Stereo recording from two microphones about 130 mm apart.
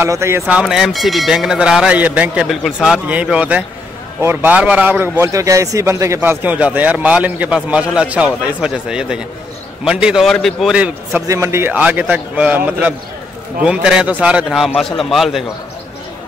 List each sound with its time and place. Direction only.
0.0 s a man's voice: 20° right (ahead or behind)
0.6 s a man's voice: centre (ahead or behind)
11.1 s a man's voice: 20° right (ahead or behind); by 15.4 s centre (ahead or behind)